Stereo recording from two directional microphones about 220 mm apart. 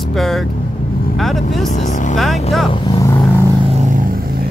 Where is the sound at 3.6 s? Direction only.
30° right (ahead or behind).